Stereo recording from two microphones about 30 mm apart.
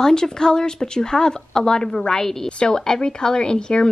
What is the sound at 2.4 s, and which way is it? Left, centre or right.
Speech, left.